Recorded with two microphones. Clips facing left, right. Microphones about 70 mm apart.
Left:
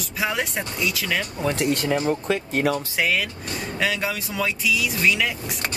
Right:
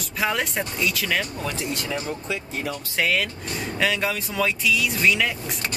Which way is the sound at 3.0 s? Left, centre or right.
Centre.